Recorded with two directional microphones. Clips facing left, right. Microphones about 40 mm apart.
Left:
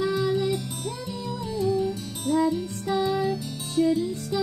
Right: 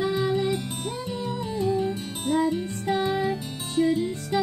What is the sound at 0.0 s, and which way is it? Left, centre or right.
Music, right.